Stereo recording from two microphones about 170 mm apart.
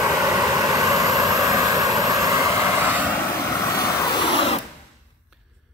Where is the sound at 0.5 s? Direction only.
20° right (ahead or behind).